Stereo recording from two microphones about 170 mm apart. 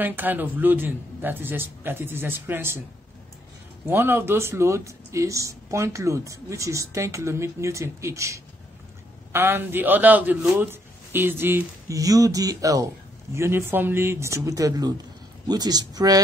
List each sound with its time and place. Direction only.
0.0 s a man's voice: 10° right (ahead or behind)
3.9 s a man's voice: 15° right (ahead or behind)